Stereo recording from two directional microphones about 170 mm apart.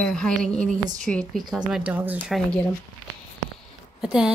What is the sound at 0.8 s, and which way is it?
Speech, 45° right (ahead or behind).